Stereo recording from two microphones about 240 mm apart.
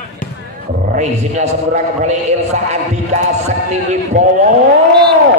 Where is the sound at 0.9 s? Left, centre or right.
Right.